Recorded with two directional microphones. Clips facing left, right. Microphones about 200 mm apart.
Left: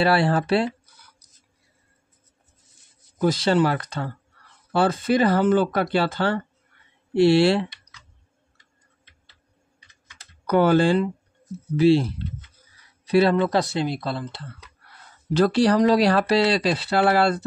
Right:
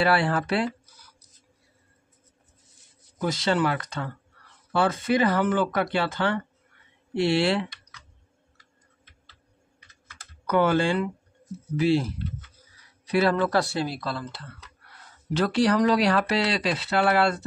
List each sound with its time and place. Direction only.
0.0 s speech: 30° left (ahead or behind)
3.2 s speech: 35° left (ahead or behind)
10.4 s speech: 35° left (ahead or behind)